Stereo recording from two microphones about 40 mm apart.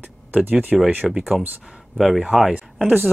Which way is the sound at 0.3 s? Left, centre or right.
Right.